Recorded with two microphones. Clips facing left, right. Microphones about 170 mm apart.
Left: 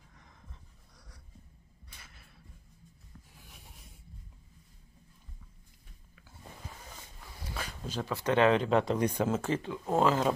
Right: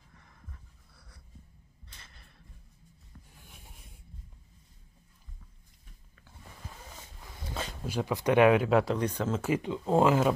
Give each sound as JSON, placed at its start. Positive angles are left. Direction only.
{"t": 0.9, "sound": "a sound", "side_deg": 10}
{"t": 3.3, "sound": "writing", "side_deg": 0}
{"t": 7.8, "sound": "speech", "side_deg": -10}
{"t": 8.9, "sound": "speech", "side_deg": 10}
{"t": 9.4, "sound": "speech", "side_deg": -15}